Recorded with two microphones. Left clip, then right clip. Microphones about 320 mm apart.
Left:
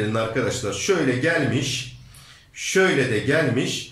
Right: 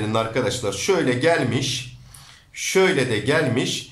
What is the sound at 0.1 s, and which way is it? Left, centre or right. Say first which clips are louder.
A man's voice: right 1 dB; centre.